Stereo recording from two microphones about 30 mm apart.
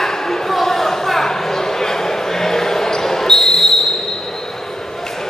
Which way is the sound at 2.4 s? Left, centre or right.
Centre.